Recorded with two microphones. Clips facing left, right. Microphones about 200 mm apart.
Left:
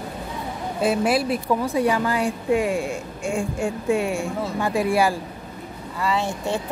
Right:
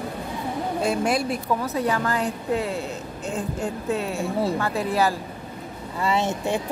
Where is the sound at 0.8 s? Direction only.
5° left (ahead or behind).